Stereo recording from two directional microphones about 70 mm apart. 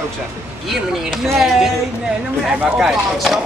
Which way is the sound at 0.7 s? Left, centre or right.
Centre.